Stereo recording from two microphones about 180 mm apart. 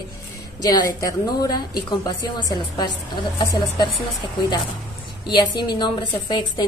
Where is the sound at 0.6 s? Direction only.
20° left (ahead or behind).